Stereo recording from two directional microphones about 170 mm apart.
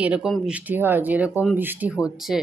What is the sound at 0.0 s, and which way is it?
Speech, 5° right (ahead or behind).